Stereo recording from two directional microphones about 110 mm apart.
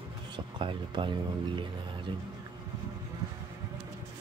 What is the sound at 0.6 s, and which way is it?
Speech, 45° right (ahead or behind).